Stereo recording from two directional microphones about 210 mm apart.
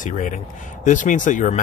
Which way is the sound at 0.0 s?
35° left (ahead or behind).